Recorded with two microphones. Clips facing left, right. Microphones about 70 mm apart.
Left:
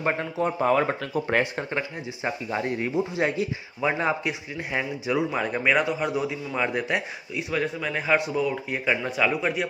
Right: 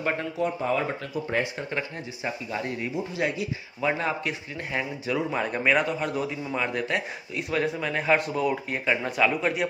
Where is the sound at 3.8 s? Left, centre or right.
Centre.